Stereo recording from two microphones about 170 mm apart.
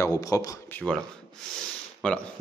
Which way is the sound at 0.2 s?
20° left (ahead or behind).